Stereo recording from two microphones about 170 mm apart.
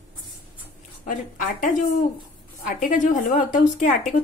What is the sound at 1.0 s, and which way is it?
Speech, 50° left (ahead or behind).